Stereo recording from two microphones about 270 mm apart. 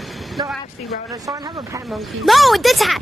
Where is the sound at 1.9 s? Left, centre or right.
Centre.